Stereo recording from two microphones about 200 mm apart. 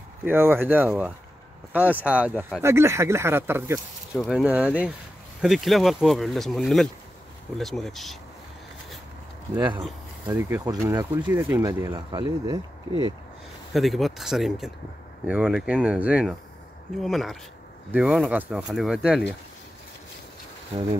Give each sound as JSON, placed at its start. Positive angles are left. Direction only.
{"t": 0.2, "sound": "speech", "side_deg": -10}
{"t": 4.2, "sound": "speech", "side_deg": 0}
{"t": 9.6, "sound": "speech", "side_deg": -25}
{"t": 13.7, "sound": "speech", "side_deg": 0}